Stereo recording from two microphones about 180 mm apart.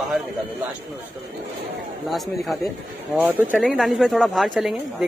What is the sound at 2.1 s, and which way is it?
Speech, centre (ahead or behind).